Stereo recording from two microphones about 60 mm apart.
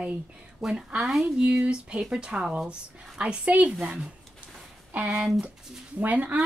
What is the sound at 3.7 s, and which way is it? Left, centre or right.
Speech, centre.